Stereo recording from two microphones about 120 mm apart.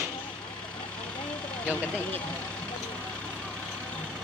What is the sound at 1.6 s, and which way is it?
Speech, 15° left (ahead or behind).